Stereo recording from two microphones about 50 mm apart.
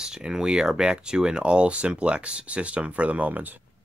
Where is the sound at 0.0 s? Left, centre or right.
Centre; by 3.5 s right.